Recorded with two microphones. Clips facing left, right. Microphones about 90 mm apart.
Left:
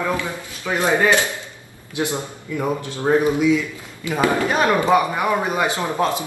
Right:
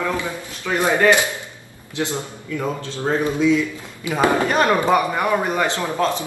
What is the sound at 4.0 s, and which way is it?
Speech, 20° right (ahead or behind).